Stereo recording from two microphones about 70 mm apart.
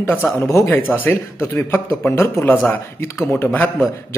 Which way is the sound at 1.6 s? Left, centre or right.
Left.